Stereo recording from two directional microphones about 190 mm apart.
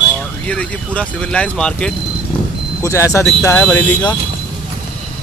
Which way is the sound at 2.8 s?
15° left (ahead or behind).